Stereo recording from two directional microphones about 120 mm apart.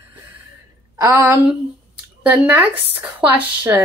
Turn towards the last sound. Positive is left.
turn(degrees=-15)  # may be behind; listen again after turning